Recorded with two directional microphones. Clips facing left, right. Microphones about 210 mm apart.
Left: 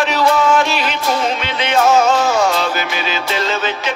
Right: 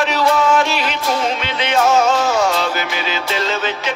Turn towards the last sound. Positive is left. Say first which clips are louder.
# left 1 dB
turn(degrees=55)  # may be behind; listen again after turning